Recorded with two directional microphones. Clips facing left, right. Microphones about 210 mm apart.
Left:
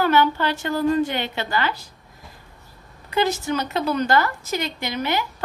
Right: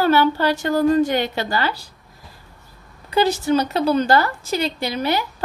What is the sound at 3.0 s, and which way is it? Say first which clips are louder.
A woman's voice: right 4 dB; 30° right (ahead or behind).